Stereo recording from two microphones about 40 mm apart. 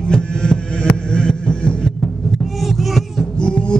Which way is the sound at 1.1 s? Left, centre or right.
Centre.